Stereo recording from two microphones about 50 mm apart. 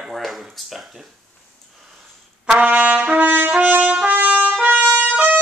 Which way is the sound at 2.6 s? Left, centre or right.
Right.